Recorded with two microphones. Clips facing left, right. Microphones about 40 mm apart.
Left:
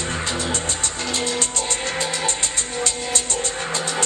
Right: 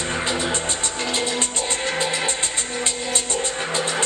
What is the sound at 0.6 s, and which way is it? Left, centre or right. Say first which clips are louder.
Music: right 1 dB; centre.